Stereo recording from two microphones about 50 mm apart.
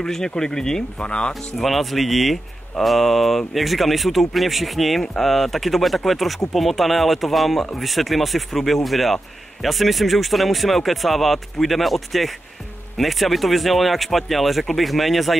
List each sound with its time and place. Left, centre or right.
0.0 s speech: centre
1.6 s speech: centre